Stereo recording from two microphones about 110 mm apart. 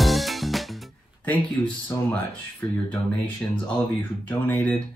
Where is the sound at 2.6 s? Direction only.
20° left (ahead or behind).